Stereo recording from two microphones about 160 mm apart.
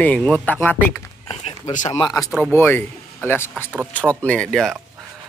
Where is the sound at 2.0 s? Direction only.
25° left (ahead or behind); by 4.8 s centre (ahead or behind).